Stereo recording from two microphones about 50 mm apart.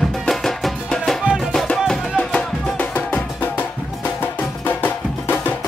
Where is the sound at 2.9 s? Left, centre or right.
Left.